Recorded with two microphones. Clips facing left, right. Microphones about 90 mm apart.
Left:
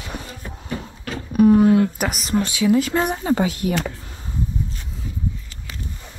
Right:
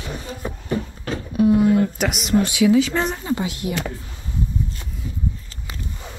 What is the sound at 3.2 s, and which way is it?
Speech, 50° left (ahead or behind).